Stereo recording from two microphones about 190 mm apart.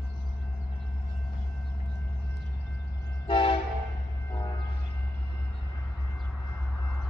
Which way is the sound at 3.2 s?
30° left (ahead or behind).